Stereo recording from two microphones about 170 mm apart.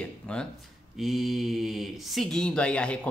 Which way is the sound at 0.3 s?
5° left (ahead or behind).